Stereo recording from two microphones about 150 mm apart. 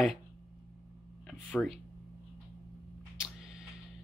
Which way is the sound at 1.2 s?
5° left (ahead or behind).